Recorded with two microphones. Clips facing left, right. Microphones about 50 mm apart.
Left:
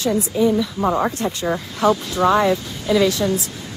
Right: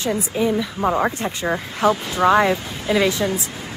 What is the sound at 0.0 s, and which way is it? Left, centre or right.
Speech, right.